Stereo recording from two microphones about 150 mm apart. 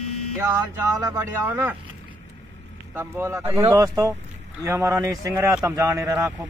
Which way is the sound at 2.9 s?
15° right (ahead or behind).